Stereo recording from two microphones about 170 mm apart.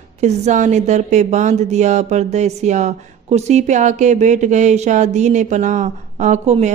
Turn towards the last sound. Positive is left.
turn(degrees=-45)  # may be behind; listen again after turning